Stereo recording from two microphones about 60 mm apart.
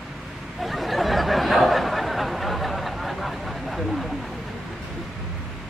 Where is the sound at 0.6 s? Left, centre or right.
Centre.